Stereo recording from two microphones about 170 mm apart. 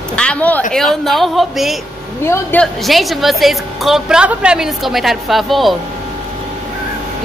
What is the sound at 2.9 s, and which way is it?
A woman's voice, centre (ahead or behind).